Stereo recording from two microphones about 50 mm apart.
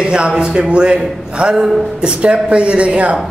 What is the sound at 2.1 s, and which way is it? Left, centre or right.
A man's voice, right.